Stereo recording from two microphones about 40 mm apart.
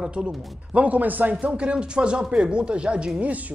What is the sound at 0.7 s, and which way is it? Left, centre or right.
Speech, right.